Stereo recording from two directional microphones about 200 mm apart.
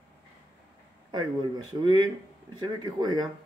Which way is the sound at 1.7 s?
20° right (ahead or behind).